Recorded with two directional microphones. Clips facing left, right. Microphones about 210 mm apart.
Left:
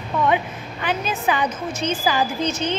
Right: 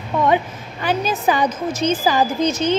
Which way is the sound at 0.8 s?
40° right (ahead or behind).